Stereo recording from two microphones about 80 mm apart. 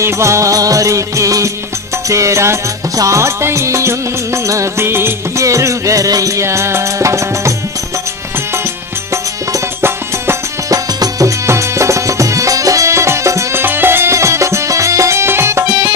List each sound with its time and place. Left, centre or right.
0.0 s music: right
9.1 s music: right
10.7 s music: right